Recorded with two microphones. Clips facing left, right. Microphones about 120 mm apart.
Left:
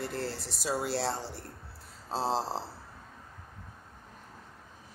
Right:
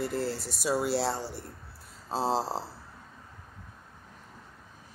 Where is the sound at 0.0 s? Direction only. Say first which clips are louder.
Right 4 dB; 10° right (ahead or behind).